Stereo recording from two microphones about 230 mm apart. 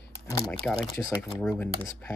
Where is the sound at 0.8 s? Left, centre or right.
Centre.